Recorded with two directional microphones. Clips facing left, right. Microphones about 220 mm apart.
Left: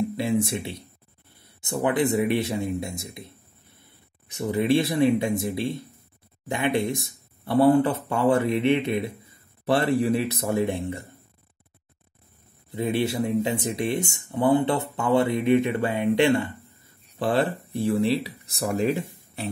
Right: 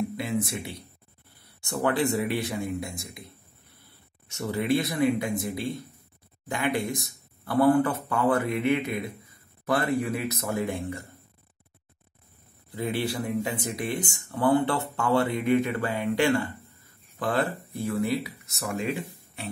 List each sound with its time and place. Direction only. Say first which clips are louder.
0.2 s speech: left 5 dB; 25° left (ahead or behind)
4.3 s speech: left 4 dB; 20° left (ahead or behind)
12.7 s speech: left 4 dB; 25° left (ahead or behind)